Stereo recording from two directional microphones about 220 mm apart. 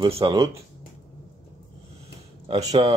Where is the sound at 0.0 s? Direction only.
20° right (ahead or behind).